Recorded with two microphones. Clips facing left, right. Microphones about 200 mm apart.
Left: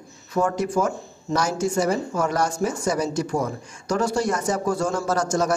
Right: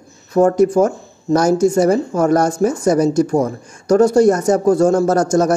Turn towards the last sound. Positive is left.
turn(degrees=-45)  # may be behind; listen again after turning